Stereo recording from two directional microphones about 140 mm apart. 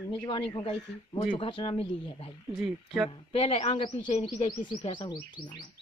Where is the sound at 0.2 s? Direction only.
40° left (ahead or behind).